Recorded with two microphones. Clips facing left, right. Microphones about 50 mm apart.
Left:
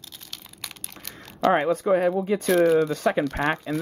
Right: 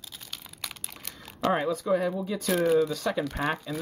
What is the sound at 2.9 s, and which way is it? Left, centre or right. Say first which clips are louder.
Speech: left 6 dB; left.